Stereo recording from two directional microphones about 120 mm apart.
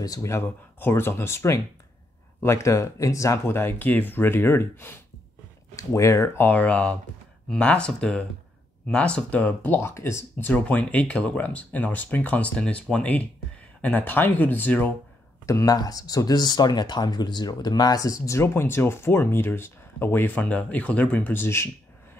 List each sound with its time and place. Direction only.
0.0 s speech: 25° left (ahead or behind)
15.4 s speech: 30° left (ahead or behind)